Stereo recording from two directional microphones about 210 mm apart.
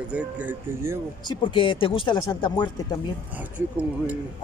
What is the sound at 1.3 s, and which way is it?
Speech, 25° left (ahead or behind).